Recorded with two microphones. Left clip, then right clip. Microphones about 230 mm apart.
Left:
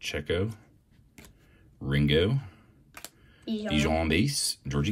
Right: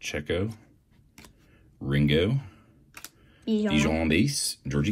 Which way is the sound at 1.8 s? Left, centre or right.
Centre.